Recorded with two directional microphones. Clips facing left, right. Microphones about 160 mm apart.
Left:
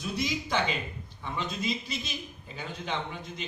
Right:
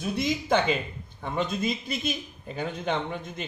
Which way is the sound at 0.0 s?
55° right (ahead or behind).